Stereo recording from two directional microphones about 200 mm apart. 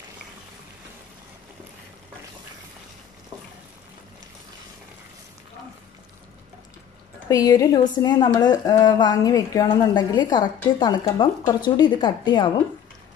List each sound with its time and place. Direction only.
7.2 s a woman's voice: 20° left (ahead or behind)